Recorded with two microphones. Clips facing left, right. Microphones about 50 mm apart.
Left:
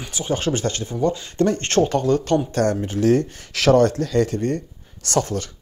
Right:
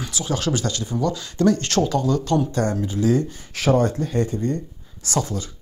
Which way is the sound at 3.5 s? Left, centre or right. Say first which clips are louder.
Left 4 dB; left.